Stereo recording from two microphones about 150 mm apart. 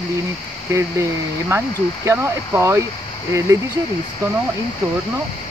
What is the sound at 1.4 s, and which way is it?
Speech, 20° right (ahead or behind).